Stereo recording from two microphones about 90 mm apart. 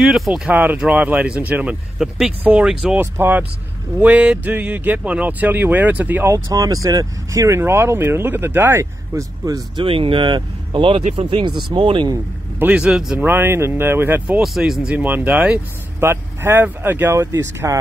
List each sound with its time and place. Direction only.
0.0 s speech: 5° right (ahead or behind)
0.5 s speech: 20° right (ahead or behind)
2.0 s speech: 5° right (ahead or behind)
3.0 s speech: 25° right (ahead or behind)
6.3 s speech: 40° right (ahead or behind)
9.8 s speech: 90° right; by 12.1 s 60° right (ahead or behind)
12.5 s a man's voice: 20° right (ahead or behind)
12.8 s speech: 5° right (ahead or behind)
13.2 s speech: 25° right (ahead or behind)
14.4 s speech: 5° right (ahead or behind)
15.0 s speech: 20° right (ahead or behind)
16.0 s speech: 25° right (ahead or behind)
17.2 s speech: 35° right (ahead or behind)